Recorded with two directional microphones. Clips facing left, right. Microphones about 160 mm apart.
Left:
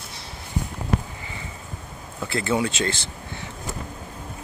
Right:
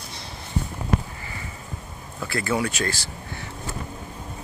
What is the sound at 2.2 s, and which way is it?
Speech, 25° left (ahead or behind).